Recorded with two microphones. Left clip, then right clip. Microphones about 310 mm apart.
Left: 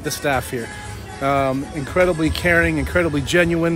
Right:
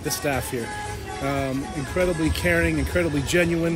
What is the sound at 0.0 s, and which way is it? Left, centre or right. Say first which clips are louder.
A man's voice: left 5 dB; centre.